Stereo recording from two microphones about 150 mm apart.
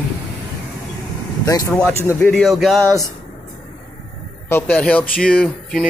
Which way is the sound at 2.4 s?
Centre (ahead or behind).